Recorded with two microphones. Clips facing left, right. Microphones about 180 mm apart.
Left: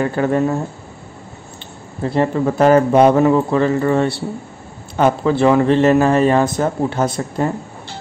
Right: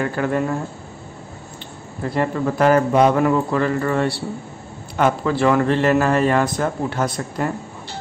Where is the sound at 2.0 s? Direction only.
25° left (ahead or behind).